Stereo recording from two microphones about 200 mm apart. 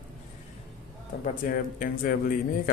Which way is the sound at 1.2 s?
45° left (ahead or behind).